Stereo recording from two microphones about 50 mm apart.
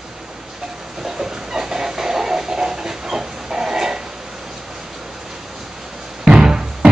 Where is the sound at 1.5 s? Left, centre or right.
Centre.